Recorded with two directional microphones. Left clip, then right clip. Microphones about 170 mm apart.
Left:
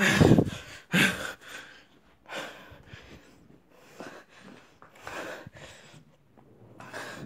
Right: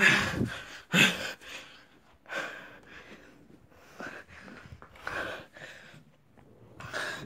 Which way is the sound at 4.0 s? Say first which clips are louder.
Right 3 dB; 25° left (ahead or behind).